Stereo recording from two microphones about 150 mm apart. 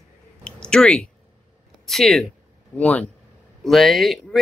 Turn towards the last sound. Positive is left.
turn(degrees=0)  # may be behind; listen again after turning